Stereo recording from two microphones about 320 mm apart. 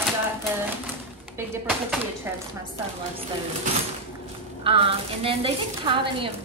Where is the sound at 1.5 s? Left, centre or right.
Centre.